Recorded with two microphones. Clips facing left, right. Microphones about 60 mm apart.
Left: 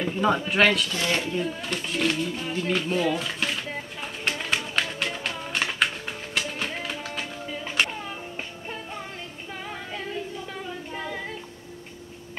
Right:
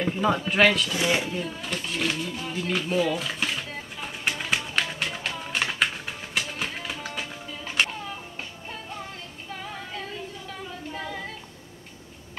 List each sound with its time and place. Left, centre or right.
0.0 s a sound: centre
0.5 s speech: centre
0.9 s speech: centre
1.4 s speech: centre
4.0 s music: centre
8.1 s music: centre
10.9 s female singing: centre